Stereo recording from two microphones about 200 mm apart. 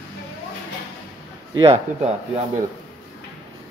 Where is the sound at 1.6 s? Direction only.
30° right (ahead or behind).